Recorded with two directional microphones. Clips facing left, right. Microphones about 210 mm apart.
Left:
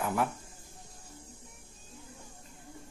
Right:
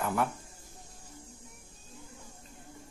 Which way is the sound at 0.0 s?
Centre (ahead or behind).